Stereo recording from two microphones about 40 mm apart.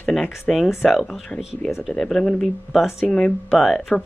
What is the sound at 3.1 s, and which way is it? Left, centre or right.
Speech, left.